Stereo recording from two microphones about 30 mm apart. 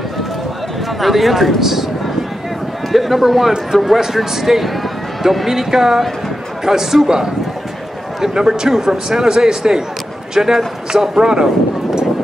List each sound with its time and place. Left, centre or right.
1.0 s speech: centre
1.6 s speech: centre
2.9 s speech: centre
8.2 s a man's voice: centre